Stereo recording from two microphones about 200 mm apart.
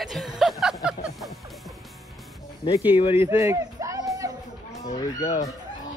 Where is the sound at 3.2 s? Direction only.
15° right (ahead or behind).